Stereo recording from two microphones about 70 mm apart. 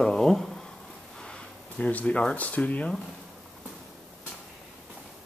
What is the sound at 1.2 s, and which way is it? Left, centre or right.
Speech, centre.